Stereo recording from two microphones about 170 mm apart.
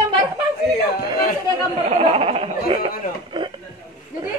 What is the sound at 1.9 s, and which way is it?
Speech, 35° right (ahead or behind).